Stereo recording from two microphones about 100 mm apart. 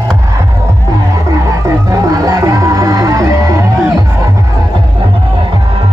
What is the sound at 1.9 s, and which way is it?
Music, 35° right (ahead or behind).